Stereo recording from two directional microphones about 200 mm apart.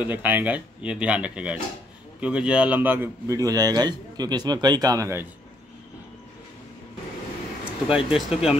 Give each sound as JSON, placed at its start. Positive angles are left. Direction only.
{"t": 0.0, "sound": "a man's voice", "side_deg": -10}
{"t": 7.9, "sound": "speech", "side_deg": -5}